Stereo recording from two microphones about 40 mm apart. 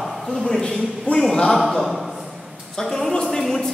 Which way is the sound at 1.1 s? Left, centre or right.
Left.